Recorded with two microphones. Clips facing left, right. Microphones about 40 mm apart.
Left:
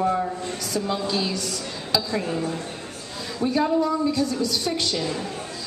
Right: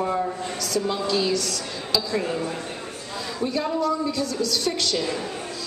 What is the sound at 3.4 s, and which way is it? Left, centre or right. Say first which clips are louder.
A woman's voice: left 4 dB; centre.